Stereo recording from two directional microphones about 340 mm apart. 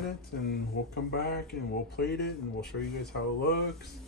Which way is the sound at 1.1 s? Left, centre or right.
Left.